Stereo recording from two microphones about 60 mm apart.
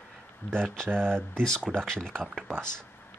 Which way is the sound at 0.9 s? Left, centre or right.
Centre.